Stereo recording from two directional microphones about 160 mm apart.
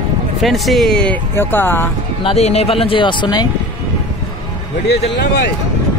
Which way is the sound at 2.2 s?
40° left (ahead or behind).